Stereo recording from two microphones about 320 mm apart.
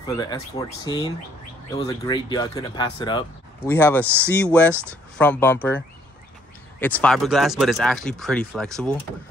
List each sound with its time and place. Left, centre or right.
0.0 s speech: centre
4.0 s speech: centre
4.3 s speech: centre
6.8 s speech: centre